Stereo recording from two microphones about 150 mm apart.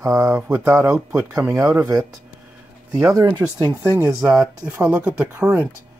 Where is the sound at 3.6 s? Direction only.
15° right (ahead or behind).